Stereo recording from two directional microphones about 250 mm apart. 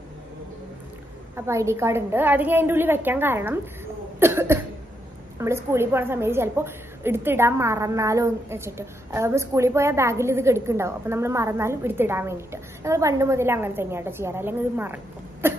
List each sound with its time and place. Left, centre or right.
1.3 s a woman's voice: centre
4.2 s cough: centre
5.4 s a woman's voice: centre
15.4 s cough: centre